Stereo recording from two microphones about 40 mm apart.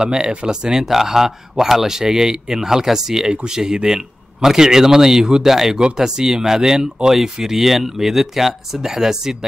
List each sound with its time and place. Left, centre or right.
0.0 s speech: centre
0.7 s speech: centre